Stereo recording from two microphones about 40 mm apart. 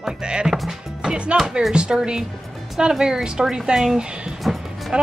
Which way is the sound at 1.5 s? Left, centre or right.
Centre.